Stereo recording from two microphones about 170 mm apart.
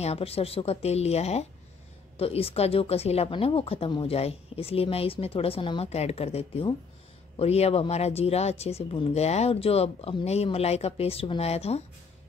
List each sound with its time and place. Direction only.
0.0 s speech: 35° left (ahead or behind)